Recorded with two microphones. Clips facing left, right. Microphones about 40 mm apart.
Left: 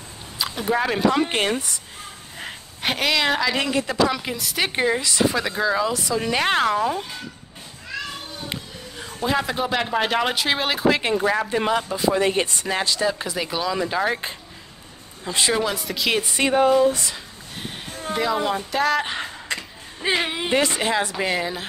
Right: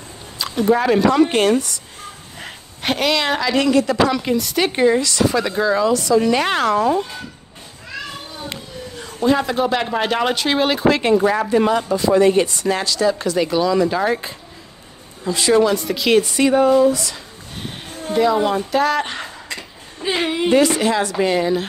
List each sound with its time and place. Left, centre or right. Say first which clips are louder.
0.4 s speech: right 6 dB; centre
2.4 s speech: right 3 dB; centre
3.6 s speech: right 8 dB; centre
4.1 s speech: right 7 dB; centre
7.9 s children playing: right 1 dB; centre
8.5 s speech: right 3 dB; centre; by 13.1 s left
13.1 s speech: right 8 dB; centre
15.2 s speech: right 7 dB; left
15.6 s speech: right 6 dB; centre
16.3 s speech: right 4 dB; left
17.9 s speech: right 6 dB; centre
20.2 s speech: right 6 dB; centre
20.5 s speech: right 5 dB; left
21.2 s speech: right 7 dB; centre